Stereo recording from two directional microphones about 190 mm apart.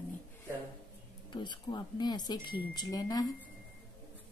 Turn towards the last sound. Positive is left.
turn(degrees=20)  # may be behind; listen again after turning